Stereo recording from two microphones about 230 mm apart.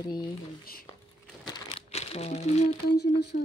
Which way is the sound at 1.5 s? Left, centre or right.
Left.